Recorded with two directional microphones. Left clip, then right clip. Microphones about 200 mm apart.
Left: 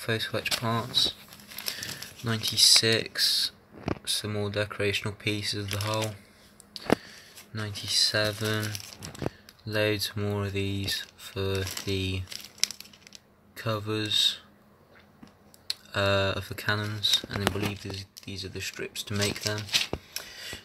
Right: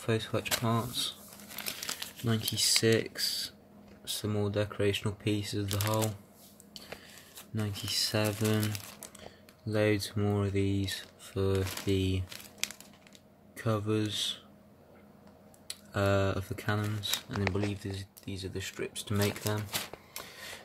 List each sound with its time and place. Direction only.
0.0 s speech: 5° right (ahead or behind)
2.2 s speech: 5° right (ahead or behind)
7.5 s speech: 20° right (ahead or behind)
15.6 s speech: 10° right (ahead or behind)